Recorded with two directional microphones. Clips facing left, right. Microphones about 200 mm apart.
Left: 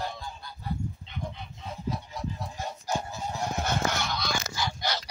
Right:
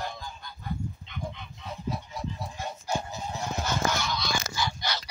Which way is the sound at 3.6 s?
60° left (ahead or behind).